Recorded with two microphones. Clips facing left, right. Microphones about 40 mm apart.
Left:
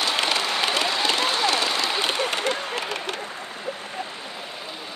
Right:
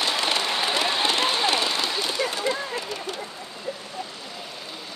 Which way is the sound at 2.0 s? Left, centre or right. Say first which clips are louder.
Left 2 dB; left.